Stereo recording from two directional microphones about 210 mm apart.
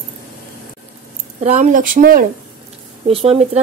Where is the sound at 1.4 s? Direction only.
35° right (ahead or behind).